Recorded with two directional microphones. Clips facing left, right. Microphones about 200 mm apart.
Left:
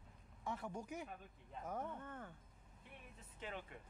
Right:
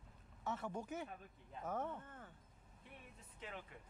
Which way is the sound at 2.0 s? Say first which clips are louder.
Left 5 dB; 55° left (ahead or behind).